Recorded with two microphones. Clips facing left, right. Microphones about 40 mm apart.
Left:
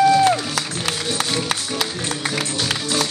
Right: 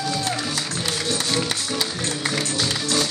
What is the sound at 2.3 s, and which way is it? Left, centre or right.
Music, centre.